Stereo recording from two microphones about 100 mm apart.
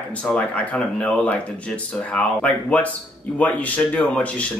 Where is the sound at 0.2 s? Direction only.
10° left (ahead or behind).